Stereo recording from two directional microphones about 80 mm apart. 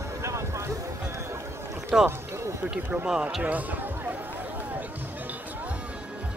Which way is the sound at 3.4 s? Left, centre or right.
Right.